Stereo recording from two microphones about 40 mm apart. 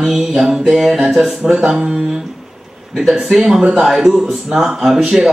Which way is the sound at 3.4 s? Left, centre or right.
Centre.